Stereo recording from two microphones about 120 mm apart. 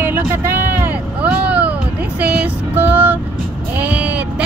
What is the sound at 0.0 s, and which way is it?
Vehicle, 20° right (ahead or behind).